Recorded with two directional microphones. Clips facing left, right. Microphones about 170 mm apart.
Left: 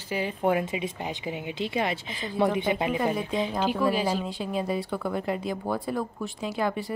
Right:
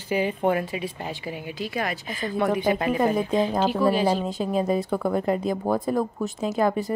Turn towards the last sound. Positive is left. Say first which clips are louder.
# right 5 dB
turn(degrees=-45)  # may be behind; listen again after turning